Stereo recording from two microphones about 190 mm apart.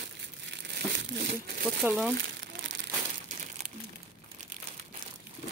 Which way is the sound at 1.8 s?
Centre (ahead or behind).